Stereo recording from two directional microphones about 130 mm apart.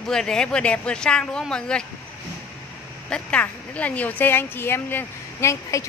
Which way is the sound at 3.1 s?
10° left (ahead or behind).